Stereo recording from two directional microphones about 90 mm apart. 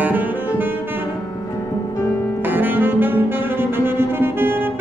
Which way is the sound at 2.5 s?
20° right (ahead or behind).